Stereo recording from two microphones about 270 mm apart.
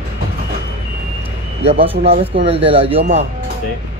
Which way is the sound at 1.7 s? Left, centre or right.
Right.